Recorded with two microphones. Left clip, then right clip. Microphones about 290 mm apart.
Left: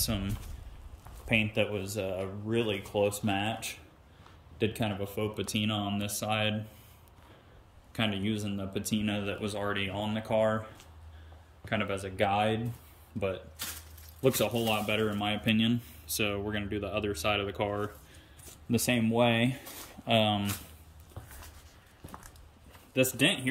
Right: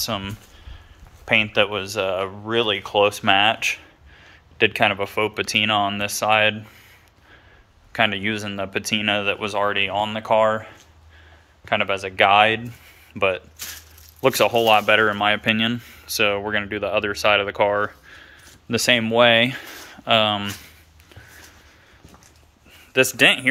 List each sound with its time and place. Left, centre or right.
0.0 s speech: centre
1.6 s speech: right
3.1 s speech: centre
7.9 s speech: centre
14.2 s speech: centre
22.9 s speech: centre